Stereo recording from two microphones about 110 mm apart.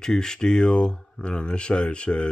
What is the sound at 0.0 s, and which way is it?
Speech, 5° left (ahead or behind).